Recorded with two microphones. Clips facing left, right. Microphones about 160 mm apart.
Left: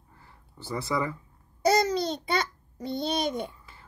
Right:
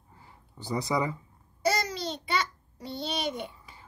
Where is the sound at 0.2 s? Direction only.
15° right (ahead or behind).